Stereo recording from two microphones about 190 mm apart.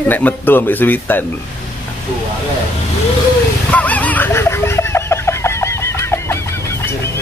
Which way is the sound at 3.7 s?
10° left (ahead or behind).